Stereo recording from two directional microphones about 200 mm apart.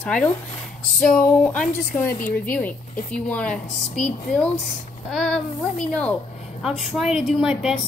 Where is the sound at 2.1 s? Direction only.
45° left (ahead or behind).